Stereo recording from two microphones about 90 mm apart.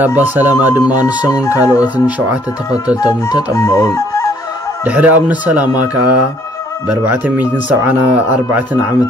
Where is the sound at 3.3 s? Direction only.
40° left (ahead or behind).